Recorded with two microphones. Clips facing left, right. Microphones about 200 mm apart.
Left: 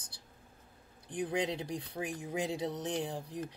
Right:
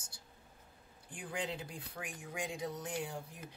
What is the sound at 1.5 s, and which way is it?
Speech, 80° left.